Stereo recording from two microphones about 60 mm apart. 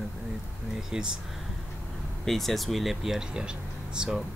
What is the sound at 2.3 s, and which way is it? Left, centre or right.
Speech, centre.